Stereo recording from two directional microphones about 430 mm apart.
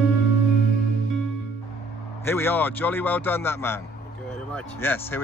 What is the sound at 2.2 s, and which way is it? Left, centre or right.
Speech, centre.